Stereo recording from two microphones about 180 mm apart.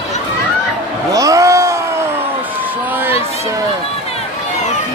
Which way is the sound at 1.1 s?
20° right (ahead or behind).